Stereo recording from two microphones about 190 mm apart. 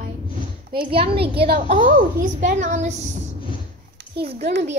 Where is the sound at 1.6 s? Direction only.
40° right (ahead or behind).